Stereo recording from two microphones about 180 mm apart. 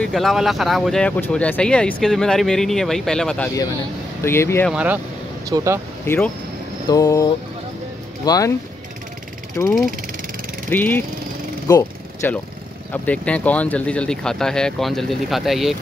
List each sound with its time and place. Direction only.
0.0 s speech: centre (ahead or behind)
4.2 s speech: 15° left (ahead or behind)
4.6 s speech: 5° right (ahead or behind)
6.0 s speech: 15° left (ahead or behind)
6.9 s a sound: 20° left (ahead or behind)
10.7 s speech: 10° left (ahead or behind)
11.6 s vehicle: 15° left (ahead or behind)
12.9 s speech: 10° left (ahead or behind)